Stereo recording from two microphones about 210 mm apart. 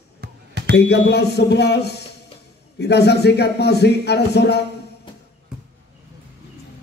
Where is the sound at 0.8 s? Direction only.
50° left (ahead or behind).